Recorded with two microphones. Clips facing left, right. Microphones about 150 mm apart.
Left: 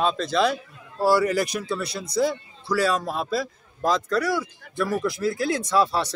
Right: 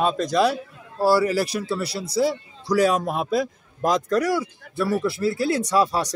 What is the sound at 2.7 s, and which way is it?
Speech, 15° right (ahead or behind).